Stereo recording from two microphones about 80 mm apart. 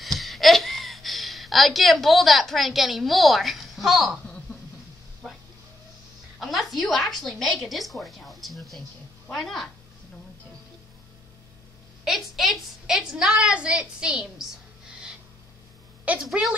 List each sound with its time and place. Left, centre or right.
0.0 s a sound: centre
6.4 s a woman's voice: centre
12.0 s a woman's voice: centre
16.1 s a woman's voice: centre